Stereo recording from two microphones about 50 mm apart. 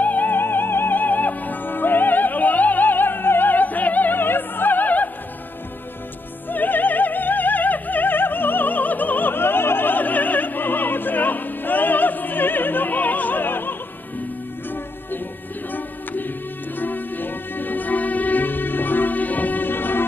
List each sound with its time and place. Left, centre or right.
0.0 s music: left
6.5 s opera: left
15.7 s music: left